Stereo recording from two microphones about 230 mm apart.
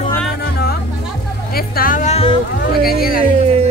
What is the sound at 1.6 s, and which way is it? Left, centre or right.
Speech, left.